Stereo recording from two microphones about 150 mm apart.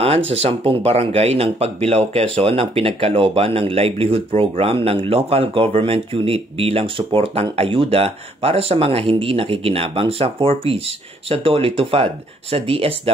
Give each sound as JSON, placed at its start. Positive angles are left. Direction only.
{"t": 0.0, "sound": "speech", "side_deg": -40}